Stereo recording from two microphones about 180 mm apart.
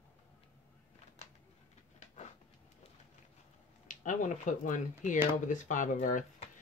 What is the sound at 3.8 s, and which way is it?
Speech, 45° left (ahead or behind).